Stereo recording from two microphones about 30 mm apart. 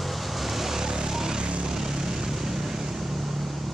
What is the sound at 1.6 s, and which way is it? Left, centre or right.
Vehicle, centre.